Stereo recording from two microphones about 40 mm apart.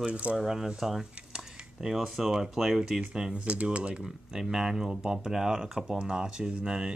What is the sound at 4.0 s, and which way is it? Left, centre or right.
Speech, centre.